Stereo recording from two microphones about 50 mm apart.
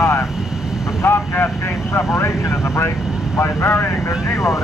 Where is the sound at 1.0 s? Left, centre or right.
Left.